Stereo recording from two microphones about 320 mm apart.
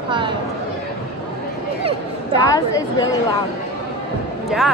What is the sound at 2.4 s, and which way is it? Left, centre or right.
Speech, centre.